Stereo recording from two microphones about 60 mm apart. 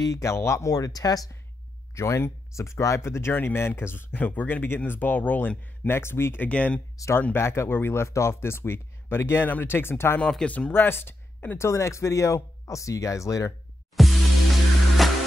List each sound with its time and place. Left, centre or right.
0.0 s speech: left
0.7 s speech: left
2.0 s speech: left
5.9 s speech: left
6.4 s speech: left
7.3 s speech: left
10.4 s speech: centre
10.7 s speech: left
13.9 s music: centre